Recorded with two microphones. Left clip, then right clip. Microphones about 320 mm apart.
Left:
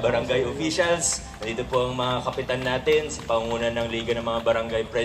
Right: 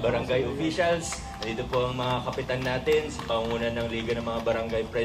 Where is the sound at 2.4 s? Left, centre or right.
Left.